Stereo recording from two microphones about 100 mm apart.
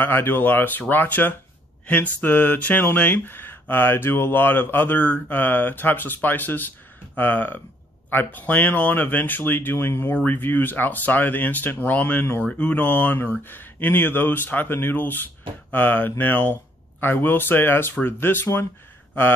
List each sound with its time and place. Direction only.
0.0 s speech: 20° left (ahead or behind)